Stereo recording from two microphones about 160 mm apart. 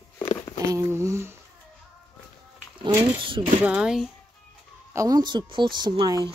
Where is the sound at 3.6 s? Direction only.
5° right (ahead or behind).